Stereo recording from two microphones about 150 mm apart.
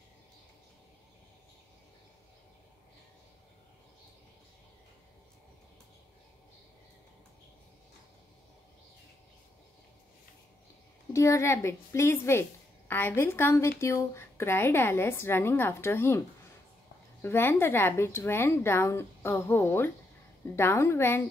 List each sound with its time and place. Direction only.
11.1 s a woman's voice: 20° left (ahead or behind)
17.2 s a woman's voice: 15° left (ahead or behind)